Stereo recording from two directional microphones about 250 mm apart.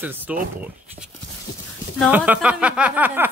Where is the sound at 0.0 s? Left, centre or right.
Centre.